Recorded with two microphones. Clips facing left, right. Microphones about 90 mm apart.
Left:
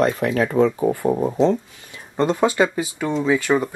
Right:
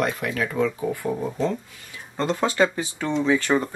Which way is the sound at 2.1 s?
20° left (ahead or behind).